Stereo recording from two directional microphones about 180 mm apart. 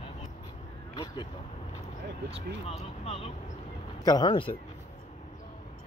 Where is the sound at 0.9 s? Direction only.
25° left (ahead or behind).